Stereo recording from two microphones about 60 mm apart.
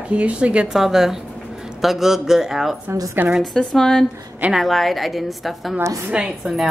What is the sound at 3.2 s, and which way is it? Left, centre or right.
Speech, right.